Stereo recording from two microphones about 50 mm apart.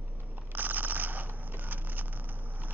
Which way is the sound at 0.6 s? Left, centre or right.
Right.